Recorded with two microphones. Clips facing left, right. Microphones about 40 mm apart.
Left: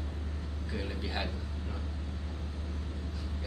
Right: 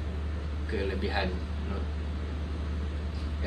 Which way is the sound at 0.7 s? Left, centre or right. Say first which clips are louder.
Right 6 dB; centre.